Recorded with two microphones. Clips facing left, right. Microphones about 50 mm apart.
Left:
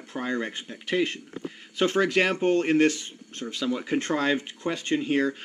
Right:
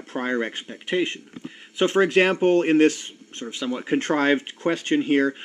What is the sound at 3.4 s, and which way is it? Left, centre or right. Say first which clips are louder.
Speech: even; centre.